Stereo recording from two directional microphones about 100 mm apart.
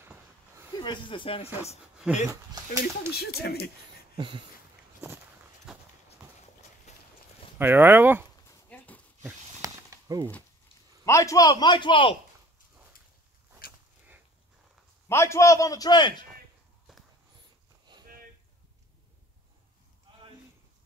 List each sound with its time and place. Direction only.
0.0 s a sound: 20° right (ahead or behind)
0.8 s speech: 55° left (ahead or behind); by 1.8 s 85° left
2.2 s speech: 35° right (ahead or behind)
4.2 s a sound: 55° right (ahead or behind)
5.7 s clip-clop: 5° right (ahead or behind)
7.5 s speech: 20° right (ahead or behind)
8.6 s dog: 15° left (ahead or behind)
9.6 s a sound: 35° right (ahead or behind)
11.1 s a man's voice: 30° left (ahead or behind); by 12.2 s 55° left (ahead or behind)
15.0 s a man's voice: 30° left (ahead or behind); by 16.3 s 50° left (ahead or behind)